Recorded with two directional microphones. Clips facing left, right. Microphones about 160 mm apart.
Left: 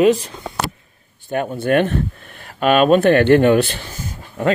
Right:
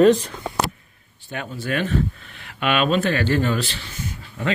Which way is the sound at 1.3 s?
50° left (ahead or behind).